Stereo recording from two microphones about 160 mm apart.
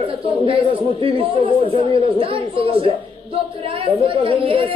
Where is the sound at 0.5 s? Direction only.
35° right (ahead or behind).